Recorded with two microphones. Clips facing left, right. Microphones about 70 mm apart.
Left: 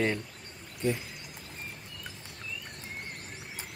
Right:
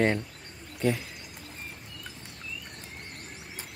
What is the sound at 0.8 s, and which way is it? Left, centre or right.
Speech, right.